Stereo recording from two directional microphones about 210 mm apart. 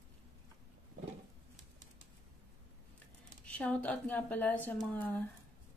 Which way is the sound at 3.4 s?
5° left (ahead or behind).